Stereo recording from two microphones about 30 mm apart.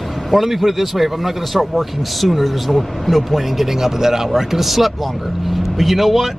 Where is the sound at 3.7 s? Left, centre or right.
Centre.